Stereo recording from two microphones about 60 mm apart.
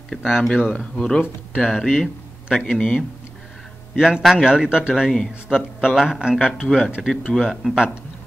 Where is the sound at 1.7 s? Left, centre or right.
Centre.